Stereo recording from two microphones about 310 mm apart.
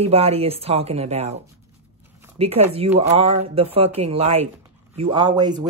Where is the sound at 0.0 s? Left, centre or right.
Centre.